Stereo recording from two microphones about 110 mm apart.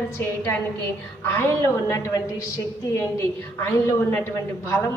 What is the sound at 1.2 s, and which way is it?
A woman's voice, 20° left (ahead or behind).